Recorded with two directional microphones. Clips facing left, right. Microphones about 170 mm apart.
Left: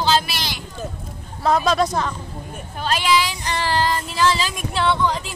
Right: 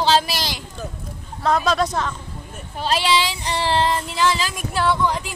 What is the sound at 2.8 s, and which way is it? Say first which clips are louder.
Child singing: even; 30° right (ahead or behind).